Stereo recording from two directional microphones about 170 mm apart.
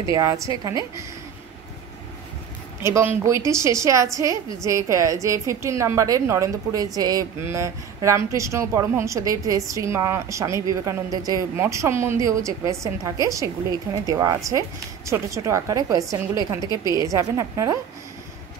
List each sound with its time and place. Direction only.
0.1 s a woman's voice: 20° right (ahead or behind)
2.8 s a woman's voice: 15° right (ahead or behind)